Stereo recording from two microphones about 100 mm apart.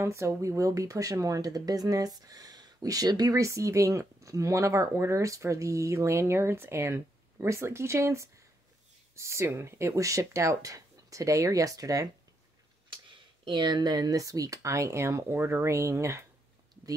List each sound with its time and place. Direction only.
0.0 s speech: 30° right (ahead or behind)
13.5 s speech: 50° right (ahead or behind); by 16.3 s 30° right (ahead or behind)